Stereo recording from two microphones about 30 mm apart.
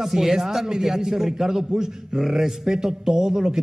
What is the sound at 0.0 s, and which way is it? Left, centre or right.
A man's voice, centre.